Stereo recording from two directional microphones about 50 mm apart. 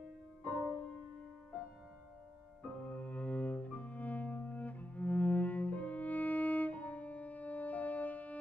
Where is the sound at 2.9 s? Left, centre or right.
Left.